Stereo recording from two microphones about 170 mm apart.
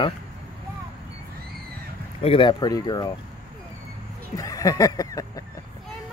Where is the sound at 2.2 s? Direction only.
30° left (ahead or behind).